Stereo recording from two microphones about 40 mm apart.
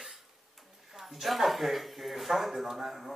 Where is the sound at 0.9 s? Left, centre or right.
Centre.